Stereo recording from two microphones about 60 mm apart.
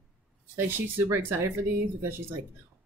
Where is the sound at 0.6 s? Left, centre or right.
Right.